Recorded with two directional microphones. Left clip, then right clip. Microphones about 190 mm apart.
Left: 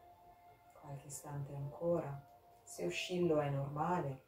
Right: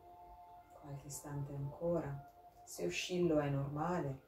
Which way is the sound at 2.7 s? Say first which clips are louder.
Even; centre (ahead or behind).